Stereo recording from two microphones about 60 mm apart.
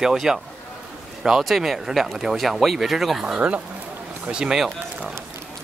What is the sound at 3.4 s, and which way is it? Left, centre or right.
Speech, right.